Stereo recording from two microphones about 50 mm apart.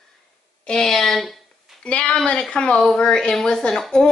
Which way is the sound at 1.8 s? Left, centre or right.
Left.